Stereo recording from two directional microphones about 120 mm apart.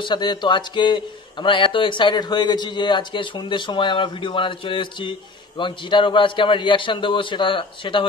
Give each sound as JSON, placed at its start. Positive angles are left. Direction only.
{"t": 0.0, "sound": "a man's voice", "side_deg": 40}